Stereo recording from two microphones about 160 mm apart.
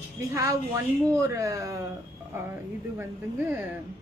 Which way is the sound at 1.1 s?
20° right (ahead or behind).